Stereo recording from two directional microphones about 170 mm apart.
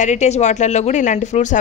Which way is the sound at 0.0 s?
45° left (ahead or behind).